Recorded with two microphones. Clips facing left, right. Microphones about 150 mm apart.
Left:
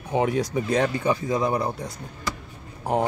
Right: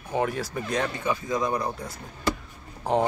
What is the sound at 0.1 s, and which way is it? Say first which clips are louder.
Speech: left 3 dB; 15° left (ahead or behind).